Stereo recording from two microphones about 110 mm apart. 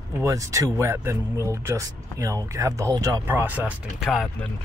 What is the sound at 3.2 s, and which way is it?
Speech, 15° right (ahead or behind).